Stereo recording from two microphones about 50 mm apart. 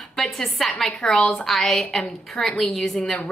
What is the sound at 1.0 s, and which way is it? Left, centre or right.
A woman's voice, centre.